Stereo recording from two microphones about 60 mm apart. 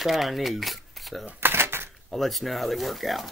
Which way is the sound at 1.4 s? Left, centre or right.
Right.